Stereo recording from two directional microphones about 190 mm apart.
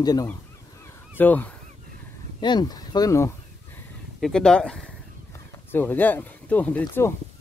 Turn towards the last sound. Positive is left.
turn(degrees=10)  # may be behind; listen again after turning